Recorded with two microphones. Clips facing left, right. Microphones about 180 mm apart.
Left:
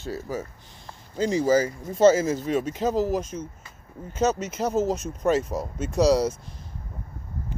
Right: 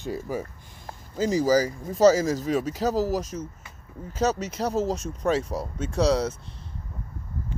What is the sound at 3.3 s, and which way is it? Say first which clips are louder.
Speech: even; 10° left (ahead or behind).